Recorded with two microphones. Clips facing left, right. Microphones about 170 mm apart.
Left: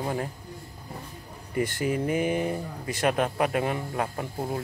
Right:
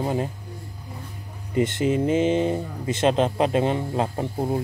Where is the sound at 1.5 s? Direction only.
20° right (ahead or behind).